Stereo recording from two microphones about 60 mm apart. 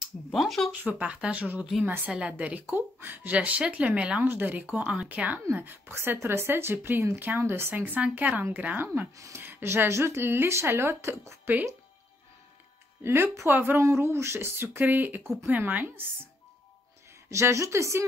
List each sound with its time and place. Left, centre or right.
0.0 s a sound: centre
0.7 s speech: right
2.6 s speech: right
3.3 s speech: right
4.2 s speech: right
5.5 s speech: right
7.8 s speech: right
13.0 s speech: right
13.7 s a woman's voice: right
14.0 s speech: right
17.3 s a woman's voice: right